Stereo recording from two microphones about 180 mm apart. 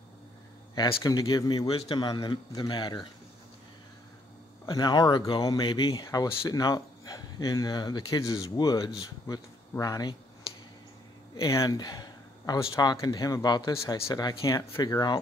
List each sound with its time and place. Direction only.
0.7 s speech: 20° left (ahead or behind)
1.7 s speech: 30° left (ahead or behind)
4.6 s speech: 20° left (ahead or behind)
11.3 s speech: 20° left (ahead or behind)